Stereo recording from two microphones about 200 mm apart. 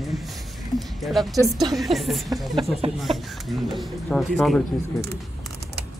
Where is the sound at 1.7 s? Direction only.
Centre (ahead or behind).